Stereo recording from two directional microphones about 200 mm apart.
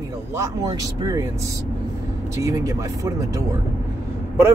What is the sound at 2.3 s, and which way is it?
Speech, 15° right (ahead or behind).